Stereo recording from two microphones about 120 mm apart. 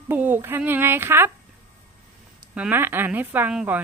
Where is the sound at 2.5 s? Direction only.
15° right (ahead or behind).